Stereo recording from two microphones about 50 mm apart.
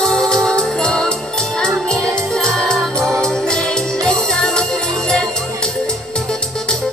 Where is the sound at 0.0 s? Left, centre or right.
Centre.